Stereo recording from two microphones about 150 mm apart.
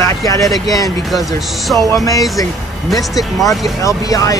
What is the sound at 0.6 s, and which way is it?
Speech, 25° left (ahead or behind).